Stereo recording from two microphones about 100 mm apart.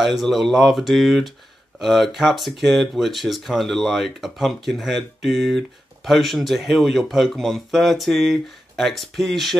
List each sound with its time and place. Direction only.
0.0 s speech: centre (ahead or behind)